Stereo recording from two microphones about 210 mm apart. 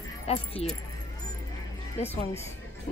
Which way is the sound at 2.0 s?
30° left (ahead or behind).